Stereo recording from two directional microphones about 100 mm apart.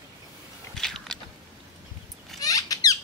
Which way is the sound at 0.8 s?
5° left (ahead or behind).